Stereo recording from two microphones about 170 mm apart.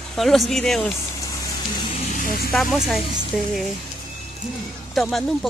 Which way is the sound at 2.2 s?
55° left (ahead or behind).